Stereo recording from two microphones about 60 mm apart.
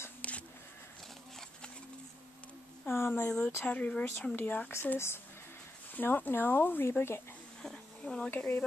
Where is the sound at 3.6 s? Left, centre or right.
Left.